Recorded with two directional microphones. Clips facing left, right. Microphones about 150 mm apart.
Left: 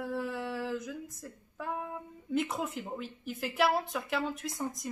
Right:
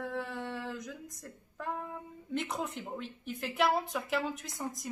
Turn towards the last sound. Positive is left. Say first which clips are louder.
# left 3 dB
turn(degrees=0)  # may be behind; listen again after turning